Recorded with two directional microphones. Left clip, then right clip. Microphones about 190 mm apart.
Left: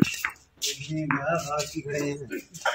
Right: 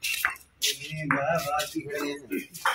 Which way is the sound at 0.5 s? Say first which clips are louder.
Right 1 dB; 30° left (ahead or behind).